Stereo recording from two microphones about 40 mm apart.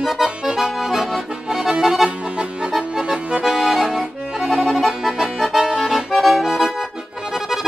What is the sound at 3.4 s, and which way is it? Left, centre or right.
Accordion, centre.